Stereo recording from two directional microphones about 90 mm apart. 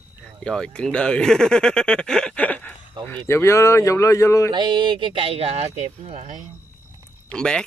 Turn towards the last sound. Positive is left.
turn(degrees=10)  # may be behind; listen again after turning